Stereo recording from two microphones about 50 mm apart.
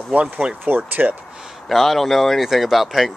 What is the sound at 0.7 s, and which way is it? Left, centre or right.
Speech, right.